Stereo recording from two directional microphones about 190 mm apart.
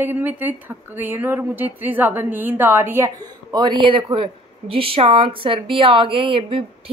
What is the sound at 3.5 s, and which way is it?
Speech, 25° right (ahead or behind).